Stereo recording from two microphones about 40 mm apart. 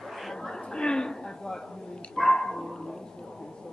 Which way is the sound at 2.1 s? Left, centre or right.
Centre.